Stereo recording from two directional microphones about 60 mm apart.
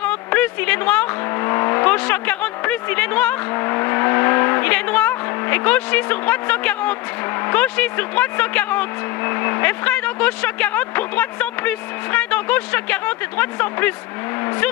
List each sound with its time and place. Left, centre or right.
0.0 s vehicle: left
1.4 s vehicle: left
3.5 s vehicle: left
7.4 s speech: left